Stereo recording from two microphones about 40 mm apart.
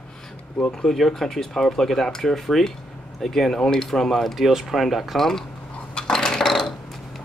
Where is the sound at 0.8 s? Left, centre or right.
Centre.